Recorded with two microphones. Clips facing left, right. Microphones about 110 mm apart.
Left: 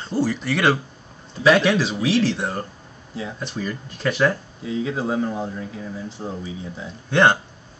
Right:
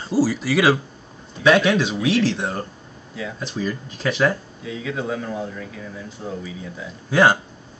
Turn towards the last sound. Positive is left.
turn(degrees=-5)  # may be behind; listen again after turning